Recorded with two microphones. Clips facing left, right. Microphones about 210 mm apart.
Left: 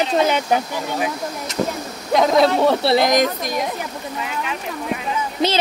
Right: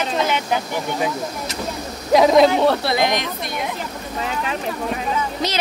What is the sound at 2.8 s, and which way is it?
Speech, 35° left (ahead or behind).